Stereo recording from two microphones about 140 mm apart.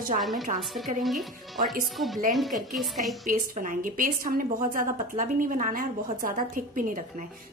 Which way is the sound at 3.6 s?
70° right (ahead or behind).